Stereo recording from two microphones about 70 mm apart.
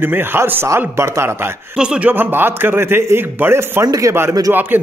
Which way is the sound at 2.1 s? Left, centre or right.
Right.